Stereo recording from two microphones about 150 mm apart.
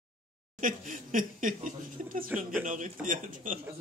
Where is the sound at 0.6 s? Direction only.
65° right (ahead or behind).